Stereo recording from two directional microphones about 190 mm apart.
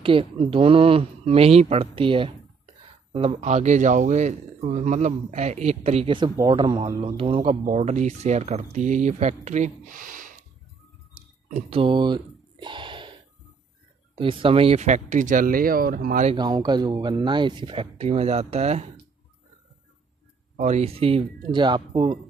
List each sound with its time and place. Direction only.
0.0 s speech: 30° right (ahead or behind); by 10.3 s 45° right (ahead or behind)
11.1 s a sound: 35° right (ahead or behind)
14.1 s speech: 25° right (ahead or behind); by 16.3 s 50° right (ahead or behind)
16.3 s speech: 20° right (ahead or behind)
20.5 s speech: 35° right (ahead or behind)